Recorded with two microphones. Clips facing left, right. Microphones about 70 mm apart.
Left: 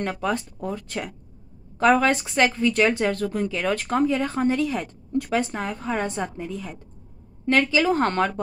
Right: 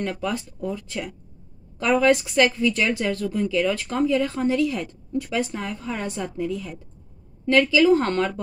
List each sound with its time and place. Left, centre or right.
0.3 s speech: left
2.1 s speech: left
5.1 s speech: left
7.4 s speech: left